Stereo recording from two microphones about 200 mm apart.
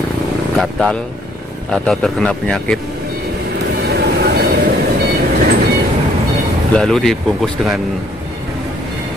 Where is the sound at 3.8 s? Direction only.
55° right (ahead or behind).